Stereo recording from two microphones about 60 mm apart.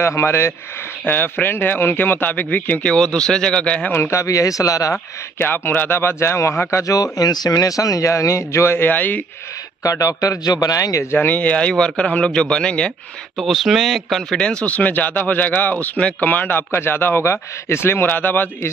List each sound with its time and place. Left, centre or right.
0.0 s speech: left
1.0 s speech: left
2.8 s speech: centre
4.1 s speech: left
5.4 s speech: left
6.8 s speech: left
8.7 s speech: left
9.8 s speech: left
11.1 s speech: left
13.4 s speech: centre
14.3 s speech: centre; by 18.7 s left